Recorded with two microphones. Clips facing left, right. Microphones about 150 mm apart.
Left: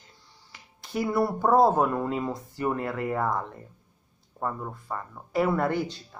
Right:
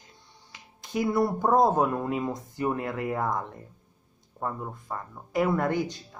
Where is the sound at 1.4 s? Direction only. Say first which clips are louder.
Left 3 dB; 15° right (ahead or behind).